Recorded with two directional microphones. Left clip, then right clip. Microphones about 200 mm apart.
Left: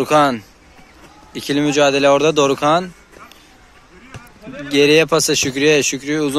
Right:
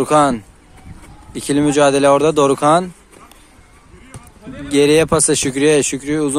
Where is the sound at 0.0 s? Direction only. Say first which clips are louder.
Right 1 dB; 25° right (ahead or behind).